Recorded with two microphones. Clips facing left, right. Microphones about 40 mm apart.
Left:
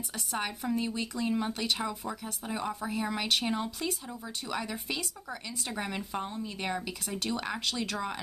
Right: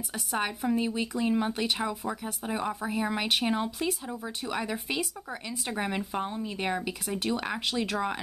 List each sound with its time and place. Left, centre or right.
0.1 s speech: centre